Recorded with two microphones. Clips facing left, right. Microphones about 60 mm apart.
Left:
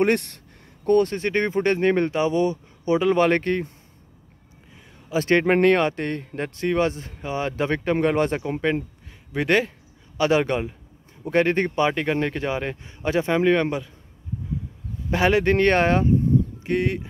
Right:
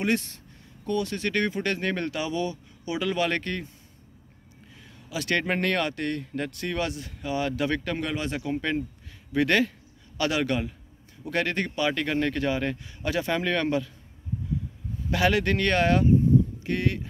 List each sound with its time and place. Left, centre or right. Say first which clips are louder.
0.0 s speech: left 6 dB; left
1.1 s speech: left 4 dB; left
5.1 s speech: left 8 dB; left
9.3 s speech: left 2 dB; left
15.0 s speech: left 4 dB; left